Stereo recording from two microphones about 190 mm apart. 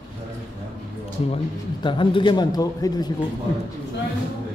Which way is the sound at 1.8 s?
25° left (ahead or behind).